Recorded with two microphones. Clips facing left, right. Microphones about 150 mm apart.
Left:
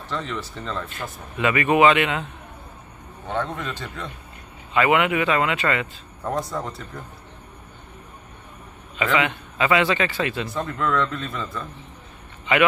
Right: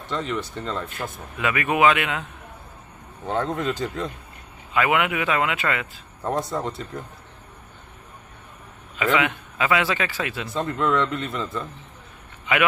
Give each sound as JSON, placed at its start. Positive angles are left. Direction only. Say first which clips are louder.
{"t": 0.1, "sound": "speech", "louder": "right 2 dB", "side_deg": -15}
{"t": 3.3, "sound": "speech", "louder": "right 3 dB", "side_deg": -35}
{"t": 4.7, "sound": "speech", "louder": "left 3 dB", "side_deg": -5}
{"t": 6.2, "sound": "a man's voice", "louder": "right 1 dB", "side_deg": -20}
{"t": 8.9, "sound": "speech", "louder": "even", "side_deg": -10}
{"t": 10.8, "sound": "a man's voice", "louder": "right 1 dB", "side_deg": -20}